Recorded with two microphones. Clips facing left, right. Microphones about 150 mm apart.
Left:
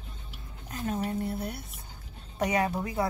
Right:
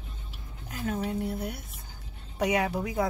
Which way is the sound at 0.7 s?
10° right (ahead or behind).